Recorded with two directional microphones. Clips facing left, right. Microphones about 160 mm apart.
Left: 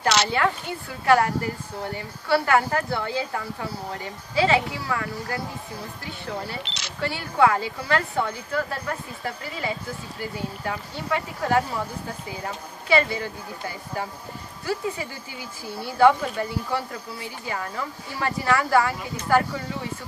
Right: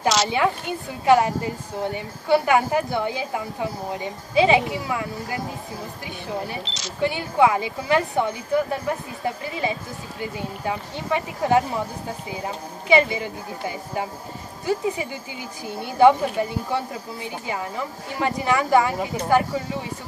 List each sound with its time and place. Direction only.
0.3 s a woman's voice: 20° right (ahead or behind)
6.6 s speech: 60° left (ahead or behind)
7.0 s a woman's voice: 15° right (ahead or behind)